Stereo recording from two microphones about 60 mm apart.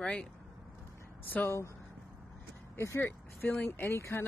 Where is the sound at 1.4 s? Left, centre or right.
Left.